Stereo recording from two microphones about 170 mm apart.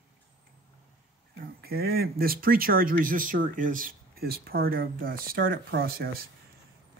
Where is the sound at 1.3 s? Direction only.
65° right (ahead or behind).